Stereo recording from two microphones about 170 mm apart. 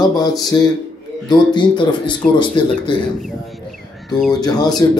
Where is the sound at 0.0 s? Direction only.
25° left (ahead or behind).